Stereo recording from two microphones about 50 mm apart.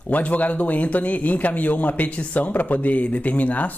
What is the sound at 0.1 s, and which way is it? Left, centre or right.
A man's voice, left.